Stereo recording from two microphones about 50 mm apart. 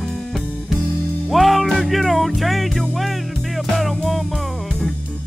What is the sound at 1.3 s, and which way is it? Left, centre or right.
Music, centre.